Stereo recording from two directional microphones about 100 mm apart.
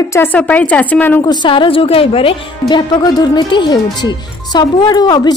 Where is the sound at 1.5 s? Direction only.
60° left (ahead or behind).